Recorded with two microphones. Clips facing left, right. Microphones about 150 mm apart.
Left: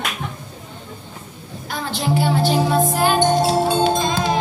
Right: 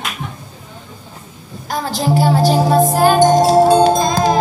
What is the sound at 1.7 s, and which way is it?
Music, 40° right (ahead or behind).